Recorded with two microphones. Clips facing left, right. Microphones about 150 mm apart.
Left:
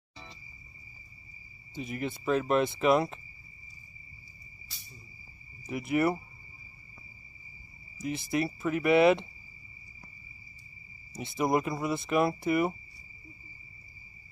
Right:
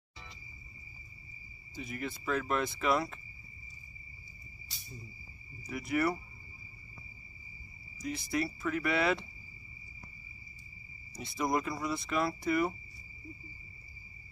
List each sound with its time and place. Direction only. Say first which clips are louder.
1.8 s speech: left 5 dB; 20° left (ahead or behind)
5.7 s speech: left 4 dB; 20° left (ahead or behind)
8.0 s speech: left 4 dB; 20° left (ahead or behind)
11.1 s speech: left 4 dB; 20° left (ahead or behind)